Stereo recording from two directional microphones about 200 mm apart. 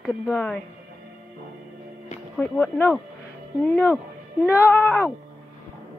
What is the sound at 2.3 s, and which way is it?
Speech, 5° left (ahead or behind).